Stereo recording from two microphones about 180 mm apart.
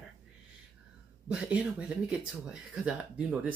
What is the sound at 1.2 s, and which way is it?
Speech, 5° right (ahead or behind).